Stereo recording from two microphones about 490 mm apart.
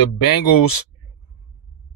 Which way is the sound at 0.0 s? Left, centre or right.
Left.